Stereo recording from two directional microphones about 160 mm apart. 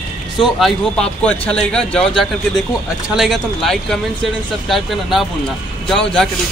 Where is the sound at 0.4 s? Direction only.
Centre (ahead or behind).